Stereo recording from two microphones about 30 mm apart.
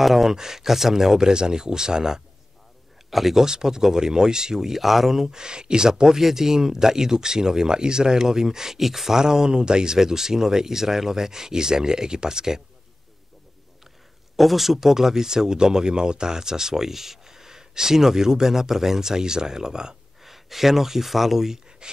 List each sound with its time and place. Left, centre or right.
0.0 s speech: centre
0.3 s speech: centre
3.1 s speech: centre
3.4 s speech: right
5.3 s speech: right; by 9.2 s centre
9.2 s speech: right
14.3 s speech: centre; by 20.0 s right
20.2 s speech: centre